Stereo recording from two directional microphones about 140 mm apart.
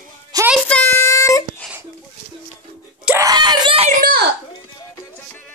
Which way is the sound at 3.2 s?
30° right (ahead or behind).